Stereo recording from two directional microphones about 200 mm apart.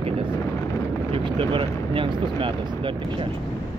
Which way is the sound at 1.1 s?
25° right (ahead or behind).